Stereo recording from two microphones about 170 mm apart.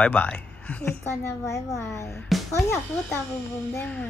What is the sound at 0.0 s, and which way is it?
A woman's voice, 10° left (ahead or behind).